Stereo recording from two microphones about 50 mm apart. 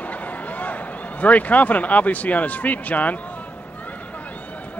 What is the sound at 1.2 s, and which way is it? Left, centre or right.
Speech, left.